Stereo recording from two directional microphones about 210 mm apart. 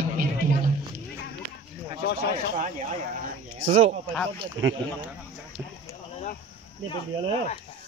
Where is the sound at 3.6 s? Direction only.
35° right (ahead or behind).